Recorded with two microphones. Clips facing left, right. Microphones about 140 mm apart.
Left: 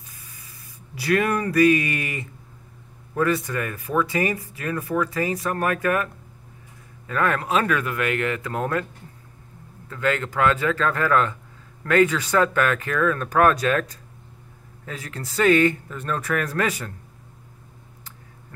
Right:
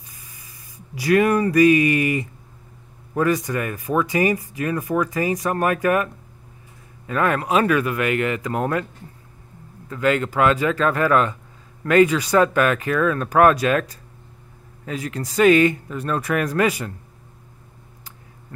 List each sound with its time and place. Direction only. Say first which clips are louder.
0.1 s spray: right 1 dB; 15° right (ahead or behind)
0.9 s speech: right 5 dB; 15° right (ahead or behind)
7.1 s speech: right 2 dB; 15° right (ahead or behind)
9.8 s speech: right 4 dB; 15° right (ahead or behind)